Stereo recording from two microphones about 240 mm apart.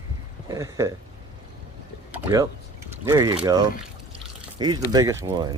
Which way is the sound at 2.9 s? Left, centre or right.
Centre.